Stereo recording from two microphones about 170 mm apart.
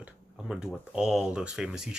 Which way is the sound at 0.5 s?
5° right (ahead or behind).